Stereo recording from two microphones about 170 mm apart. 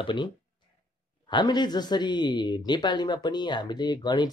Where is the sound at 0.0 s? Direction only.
30° left (ahead or behind).